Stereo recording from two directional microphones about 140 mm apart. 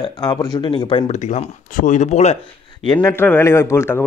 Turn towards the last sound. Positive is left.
turn(degrees=20)  # may be behind; listen again after turning